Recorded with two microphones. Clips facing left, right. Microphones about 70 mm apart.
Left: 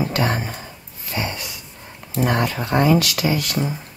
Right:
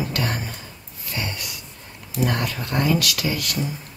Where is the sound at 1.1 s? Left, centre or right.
Left.